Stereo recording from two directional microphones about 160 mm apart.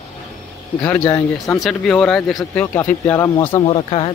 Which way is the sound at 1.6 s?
5° left (ahead or behind).